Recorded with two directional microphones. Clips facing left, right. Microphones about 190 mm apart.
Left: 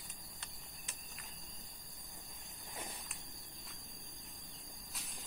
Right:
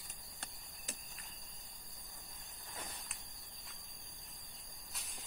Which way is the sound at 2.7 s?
15° left (ahead or behind).